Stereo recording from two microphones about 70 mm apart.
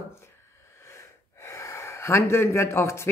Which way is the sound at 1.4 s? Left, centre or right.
Left.